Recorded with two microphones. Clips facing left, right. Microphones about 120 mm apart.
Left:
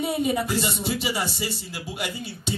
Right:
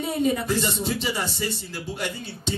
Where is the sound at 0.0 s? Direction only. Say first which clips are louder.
Even; 10° left (ahead or behind).